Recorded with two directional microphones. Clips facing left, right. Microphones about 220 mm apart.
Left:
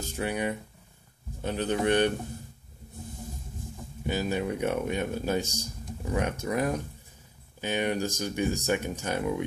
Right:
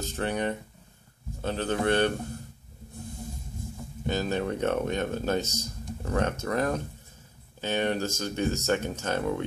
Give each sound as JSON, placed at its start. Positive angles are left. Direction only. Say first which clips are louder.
{"t": 0.0, "sound": "speech", "louder": "right 1 dB", "side_deg": 10}
{"t": 4.0, "sound": "speech", "louder": "right 1 dB", "side_deg": 10}